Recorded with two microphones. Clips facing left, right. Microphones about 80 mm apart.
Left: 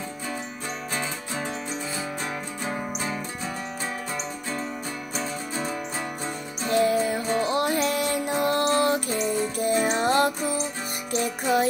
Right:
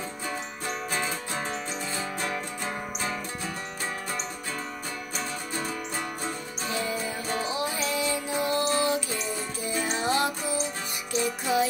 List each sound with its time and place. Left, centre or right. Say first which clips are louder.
6.7 s music: left 10 dB; left